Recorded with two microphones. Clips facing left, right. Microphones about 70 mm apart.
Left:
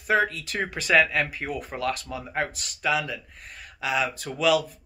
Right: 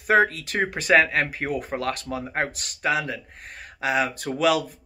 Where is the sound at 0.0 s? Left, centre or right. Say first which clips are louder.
Right 4 dB; right.